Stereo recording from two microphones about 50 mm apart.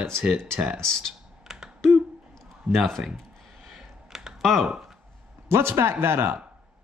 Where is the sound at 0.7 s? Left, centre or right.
Centre.